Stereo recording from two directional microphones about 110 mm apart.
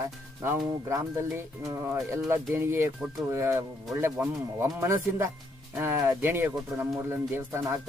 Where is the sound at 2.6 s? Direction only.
20° right (ahead or behind).